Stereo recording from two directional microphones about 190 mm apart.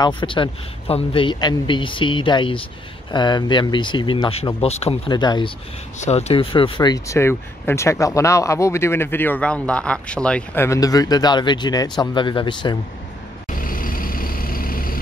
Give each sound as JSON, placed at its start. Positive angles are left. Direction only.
{"t": 0.0, "sound": "a man's voice", "side_deg": 25}
{"t": 5.9, "sound": "a man's voice", "side_deg": 35}
{"t": 13.5, "sound": "vehicle", "side_deg": 45}